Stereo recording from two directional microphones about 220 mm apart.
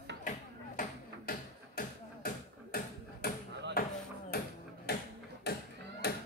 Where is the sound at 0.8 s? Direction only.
35° left (ahead or behind).